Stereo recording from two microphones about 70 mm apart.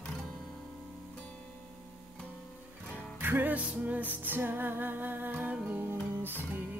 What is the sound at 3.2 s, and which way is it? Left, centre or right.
Music, right.